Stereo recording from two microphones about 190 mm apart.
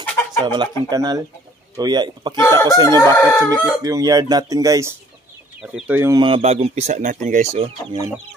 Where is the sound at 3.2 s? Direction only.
15° left (ahead or behind).